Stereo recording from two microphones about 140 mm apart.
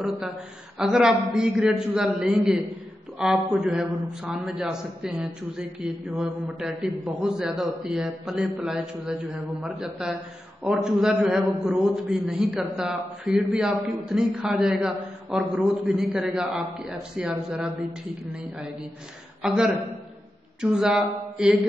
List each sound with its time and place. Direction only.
0.0 s a man's voice: centre (ahead or behind)
19.4 s a man's voice: 5° right (ahead or behind)